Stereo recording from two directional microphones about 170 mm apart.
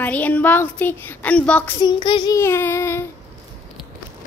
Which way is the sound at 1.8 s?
25° left (ahead or behind).